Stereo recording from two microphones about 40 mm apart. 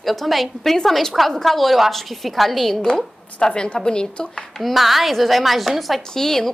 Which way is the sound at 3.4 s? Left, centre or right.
Left.